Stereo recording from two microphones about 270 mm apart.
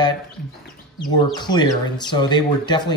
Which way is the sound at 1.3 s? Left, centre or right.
Centre.